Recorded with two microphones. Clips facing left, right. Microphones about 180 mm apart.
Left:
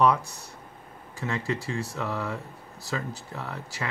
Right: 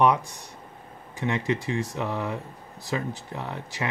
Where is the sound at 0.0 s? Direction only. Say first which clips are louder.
Right 1 dB; 20° right (ahead or behind).